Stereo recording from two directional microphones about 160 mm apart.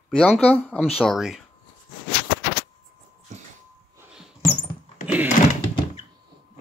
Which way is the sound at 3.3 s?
45° right (ahead or behind).